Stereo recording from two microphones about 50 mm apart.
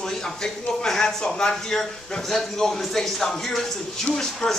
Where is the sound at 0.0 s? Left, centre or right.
Centre.